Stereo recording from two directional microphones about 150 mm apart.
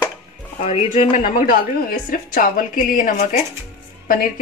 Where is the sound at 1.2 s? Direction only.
60° left (ahead or behind).